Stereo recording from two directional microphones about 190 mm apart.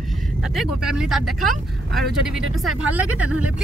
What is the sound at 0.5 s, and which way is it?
Speech, 5° right (ahead or behind).